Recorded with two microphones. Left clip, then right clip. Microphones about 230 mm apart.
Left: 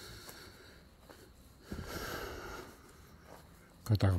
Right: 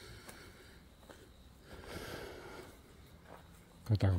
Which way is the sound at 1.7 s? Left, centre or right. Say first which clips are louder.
Left 4 dB; centre.